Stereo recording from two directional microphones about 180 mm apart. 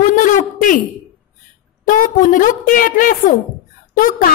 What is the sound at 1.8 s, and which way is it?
A woman's voice, 50° left (ahead or behind).